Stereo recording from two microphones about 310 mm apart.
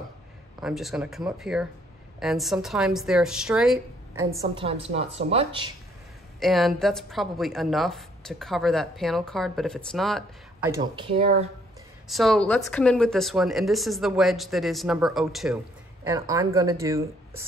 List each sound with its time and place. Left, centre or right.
0.6 s a woman's voice: centre
4.6 s a woman's voice: centre
6.4 s a woman's voice: centre
10.7 s speech: centre
12.1 s a woman's voice: centre